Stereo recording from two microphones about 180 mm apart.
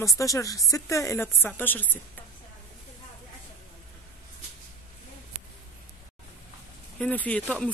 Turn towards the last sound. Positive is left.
turn(degrees=5)  # may be behind; listen again after turning